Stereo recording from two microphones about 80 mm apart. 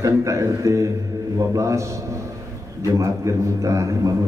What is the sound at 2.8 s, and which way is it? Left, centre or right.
A man's voice, right.